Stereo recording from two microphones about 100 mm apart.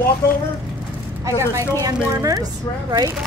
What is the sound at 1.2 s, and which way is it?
Speech, 30° right (ahead or behind).